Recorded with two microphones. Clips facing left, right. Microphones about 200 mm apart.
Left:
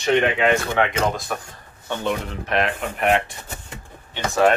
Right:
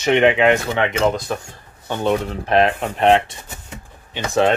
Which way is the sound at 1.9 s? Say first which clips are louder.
Right 5 dB; 35° right (ahead or behind).